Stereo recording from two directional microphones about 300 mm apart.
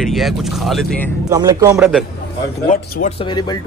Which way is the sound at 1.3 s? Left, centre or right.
Centre.